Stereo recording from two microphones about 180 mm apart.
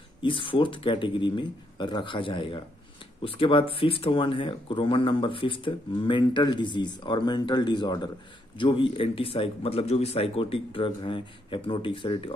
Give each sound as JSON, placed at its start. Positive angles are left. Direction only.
{"t": 0.2, "sound": "speech", "side_deg": 30}